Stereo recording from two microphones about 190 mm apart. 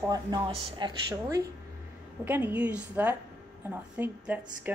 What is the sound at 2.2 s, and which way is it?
Speech, 10° right (ahead or behind).